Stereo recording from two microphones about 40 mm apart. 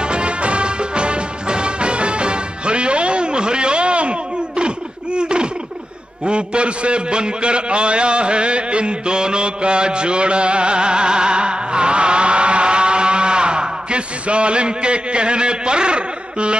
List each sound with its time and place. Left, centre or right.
0.0 s music: right
6.2 s a man's voice: right